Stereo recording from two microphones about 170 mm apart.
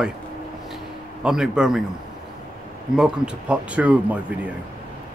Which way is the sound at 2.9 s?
5° right (ahead or behind).